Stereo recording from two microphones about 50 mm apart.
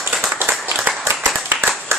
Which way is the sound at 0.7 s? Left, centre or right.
Right.